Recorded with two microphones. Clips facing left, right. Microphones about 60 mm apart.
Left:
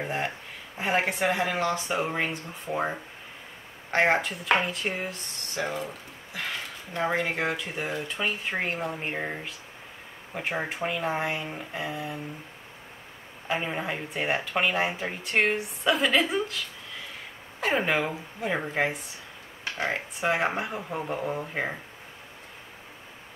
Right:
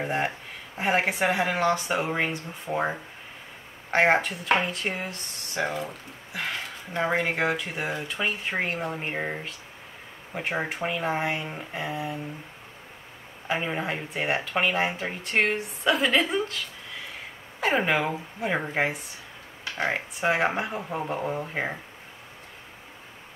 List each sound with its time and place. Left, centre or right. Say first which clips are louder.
0.0 s speech: right 3 dB; centre
4.5 s speech: even; centre
4.8 s speech: even; centre
5.6 s speech: right 2 dB; right
6.9 s speech: right 2 dB; centre
13.5 s speech: right 1 dB; centre
17.6 s speech: right 2 dB; centre
19.8 s speech: right 2 dB; centre